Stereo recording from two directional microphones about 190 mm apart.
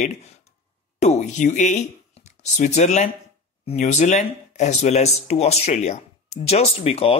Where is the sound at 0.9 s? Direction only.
40° left (ahead or behind).